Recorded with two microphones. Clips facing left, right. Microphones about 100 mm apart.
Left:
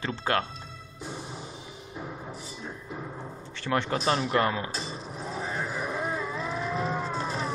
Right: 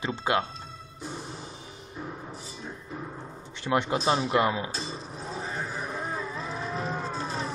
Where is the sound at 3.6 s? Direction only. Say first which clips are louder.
Right 2 dB; 15° right (ahead or behind).